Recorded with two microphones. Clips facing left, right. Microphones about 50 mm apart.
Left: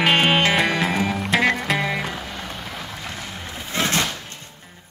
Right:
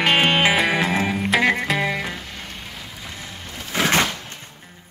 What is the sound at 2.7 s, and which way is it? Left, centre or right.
Vehicle, left.